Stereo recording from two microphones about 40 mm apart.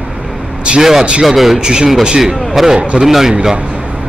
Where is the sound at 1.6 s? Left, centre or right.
Right.